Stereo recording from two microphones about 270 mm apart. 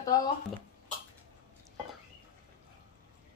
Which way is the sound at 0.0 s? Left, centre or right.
Centre.